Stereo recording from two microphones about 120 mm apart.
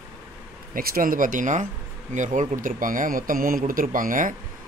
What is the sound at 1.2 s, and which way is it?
A man's voice, 90° right.